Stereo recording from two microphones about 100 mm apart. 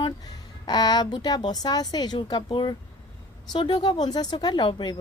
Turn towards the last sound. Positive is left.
turn(degrees=55)  # may be behind; listen again after turning